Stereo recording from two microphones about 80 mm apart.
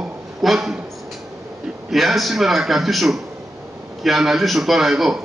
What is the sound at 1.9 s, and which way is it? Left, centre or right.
A man's voice, centre.